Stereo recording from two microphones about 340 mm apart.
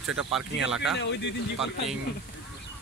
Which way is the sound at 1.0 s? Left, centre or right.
Left.